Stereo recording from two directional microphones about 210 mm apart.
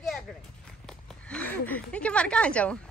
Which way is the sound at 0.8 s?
5° left (ahead or behind).